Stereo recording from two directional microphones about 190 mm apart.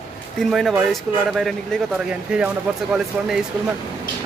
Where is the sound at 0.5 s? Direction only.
Centre (ahead or behind).